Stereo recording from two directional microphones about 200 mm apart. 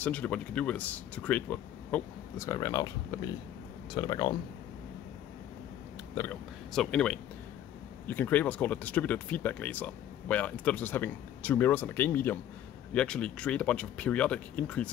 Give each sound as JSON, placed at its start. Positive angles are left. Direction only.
{"t": 0.0, "sound": "speech", "side_deg": 5}
{"t": 3.9, "sound": "speech", "side_deg": 20}
{"t": 6.7, "sound": "speech", "side_deg": 5}